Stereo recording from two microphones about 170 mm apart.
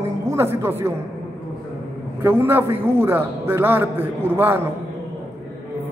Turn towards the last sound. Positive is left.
turn(degrees=-15)  # may be behind; listen again after turning